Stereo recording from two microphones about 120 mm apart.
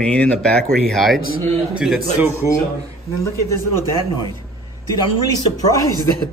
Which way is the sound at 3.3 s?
25° left (ahead or behind).